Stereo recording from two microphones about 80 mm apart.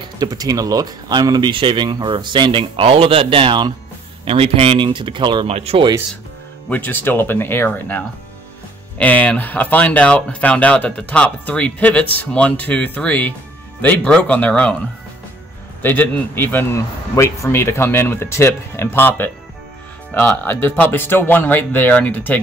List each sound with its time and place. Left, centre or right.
0.2 s speech: right
4.7 s speech: right
6.7 s speech: left
15.8 s speech: left
16.7 s speech: left